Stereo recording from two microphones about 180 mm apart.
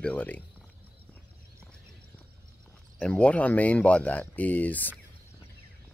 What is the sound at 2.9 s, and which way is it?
Speech, 5° left (ahead or behind).